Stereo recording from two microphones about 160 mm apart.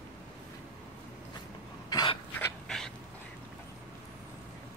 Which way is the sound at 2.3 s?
5° left (ahead or behind).